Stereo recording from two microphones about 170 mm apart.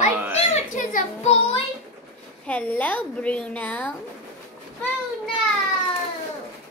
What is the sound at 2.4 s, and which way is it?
Speech, 10° left (ahead or behind).